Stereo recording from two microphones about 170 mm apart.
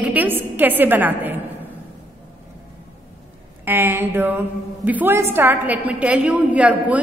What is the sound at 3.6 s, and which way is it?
A woman's voice, 15° right (ahead or behind).